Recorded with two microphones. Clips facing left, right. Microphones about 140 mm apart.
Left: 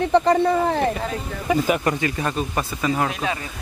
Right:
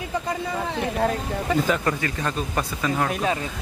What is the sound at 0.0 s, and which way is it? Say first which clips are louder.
Speech: left 11 dB; 70° left (ahead or behind).